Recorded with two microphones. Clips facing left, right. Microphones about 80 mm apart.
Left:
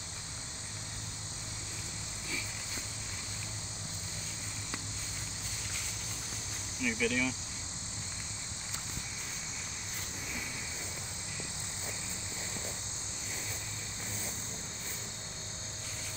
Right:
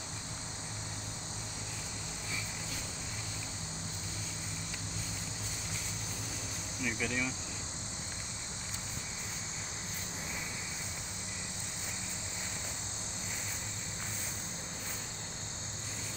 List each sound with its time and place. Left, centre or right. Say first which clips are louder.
6.8 s speech: left 4 dB; right